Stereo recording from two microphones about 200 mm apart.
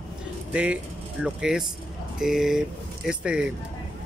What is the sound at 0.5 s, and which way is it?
Speech, 5° right (ahead or behind).